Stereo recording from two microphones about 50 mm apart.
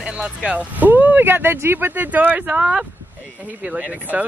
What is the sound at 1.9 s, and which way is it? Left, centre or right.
Speech, right.